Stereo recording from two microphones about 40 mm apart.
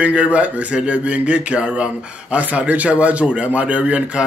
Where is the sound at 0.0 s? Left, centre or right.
Right.